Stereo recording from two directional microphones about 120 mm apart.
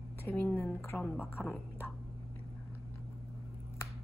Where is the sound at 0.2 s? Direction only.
20° left (ahead or behind).